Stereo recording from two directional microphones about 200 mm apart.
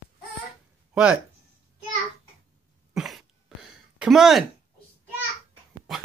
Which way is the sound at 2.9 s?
Centre (ahead or behind).